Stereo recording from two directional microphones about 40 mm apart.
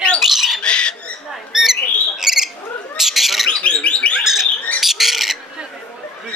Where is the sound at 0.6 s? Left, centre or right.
Left.